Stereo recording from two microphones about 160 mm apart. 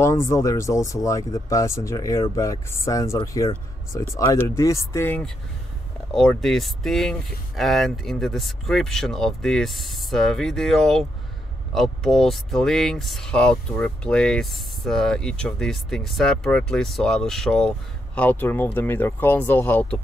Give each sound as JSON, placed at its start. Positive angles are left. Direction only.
{"t": 0.0, "sound": "speech", "side_deg": 20}